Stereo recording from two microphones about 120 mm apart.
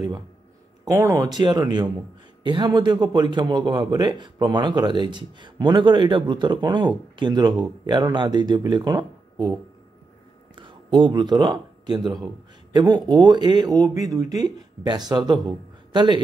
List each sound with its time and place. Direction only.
0.8 s a man's voice: 25° right (ahead or behind)
10.5 s a man's voice: 45° right (ahead or behind)